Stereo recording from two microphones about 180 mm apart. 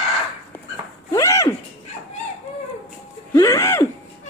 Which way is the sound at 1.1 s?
15° left (ahead or behind).